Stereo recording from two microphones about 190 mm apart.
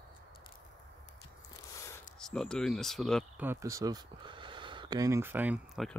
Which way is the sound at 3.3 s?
15° right (ahead or behind).